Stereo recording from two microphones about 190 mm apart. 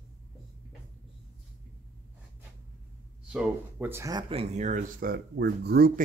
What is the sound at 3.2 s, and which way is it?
Speech, 5° right (ahead or behind).